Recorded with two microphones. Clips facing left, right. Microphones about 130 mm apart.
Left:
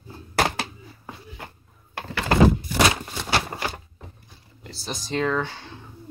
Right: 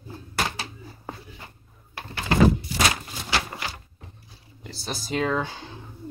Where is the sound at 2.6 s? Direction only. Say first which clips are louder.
Left 4 dB; 60° left (ahead or behind).